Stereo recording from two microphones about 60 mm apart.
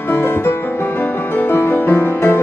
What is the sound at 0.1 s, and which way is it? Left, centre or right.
Music, left.